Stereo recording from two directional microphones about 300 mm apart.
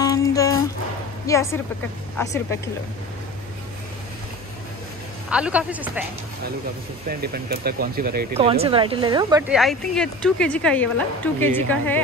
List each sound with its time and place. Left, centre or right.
0.0 s music: centre
1.2 s speech: centre
5.3 s speech: centre
7.1 s speech: right
8.5 s speech: centre
9.5 s speech: centre